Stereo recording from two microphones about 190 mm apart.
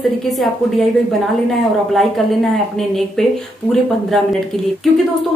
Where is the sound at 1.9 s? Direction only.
Centre (ahead or behind).